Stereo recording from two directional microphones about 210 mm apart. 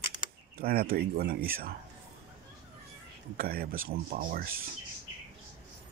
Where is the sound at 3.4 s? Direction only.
45° right (ahead or behind).